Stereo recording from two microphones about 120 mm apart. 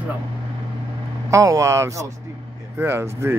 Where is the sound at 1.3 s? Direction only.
25° right (ahead or behind).